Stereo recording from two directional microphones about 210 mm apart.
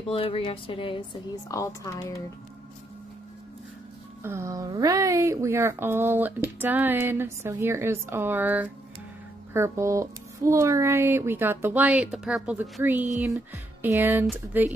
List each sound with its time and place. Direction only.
0.1 s a woman's voice: 25° left (ahead or behind)
4.2 s speech: 10° right (ahead or behind)